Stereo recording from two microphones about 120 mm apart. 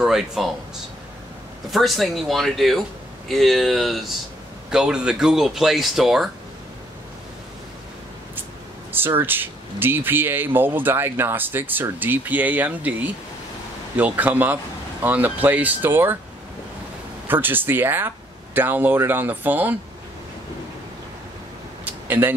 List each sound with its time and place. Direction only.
0.0 s speech: 5° right (ahead or behind)
1.7 s speech: centre (ahead or behind)
8.9 s speech: 15° right (ahead or behind)
17.3 s speech: 15° right (ahead or behind)
22.0 s a sound: 15° right (ahead or behind)